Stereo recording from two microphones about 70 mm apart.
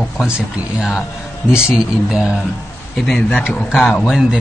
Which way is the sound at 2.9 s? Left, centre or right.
Centre.